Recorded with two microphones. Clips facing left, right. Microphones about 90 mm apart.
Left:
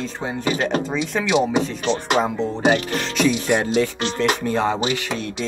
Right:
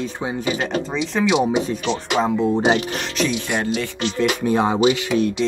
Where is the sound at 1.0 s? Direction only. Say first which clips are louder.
Right 2 dB; 5° right (ahead or behind).